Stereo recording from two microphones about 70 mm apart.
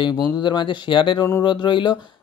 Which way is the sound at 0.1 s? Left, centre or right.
Left.